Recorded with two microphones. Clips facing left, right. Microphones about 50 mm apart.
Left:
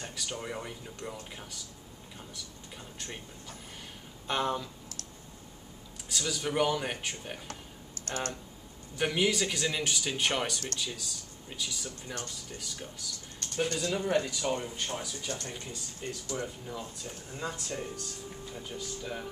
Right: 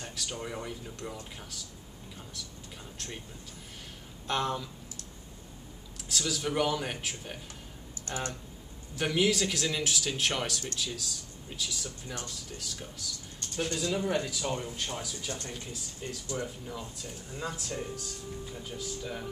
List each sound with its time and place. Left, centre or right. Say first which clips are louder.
0.0 s speech: even; centre
3.0 s speech: even; centre
4.3 s speech: even; centre
6.0 s speech: right 1 dB; centre
8.0 s speech: left 1 dB; centre
8.9 s speech: right 1 dB; centre